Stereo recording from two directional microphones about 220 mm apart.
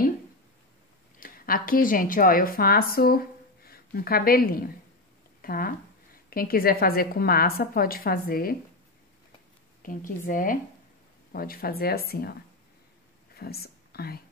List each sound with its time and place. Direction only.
1.2 s a woman's voice: 40° left (ahead or behind)
9.8 s a woman's voice: 40° left (ahead or behind)
13.4 s speech: 45° left (ahead or behind)